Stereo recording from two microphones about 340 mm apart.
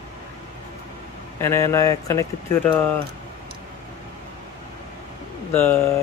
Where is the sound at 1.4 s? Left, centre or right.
Centre.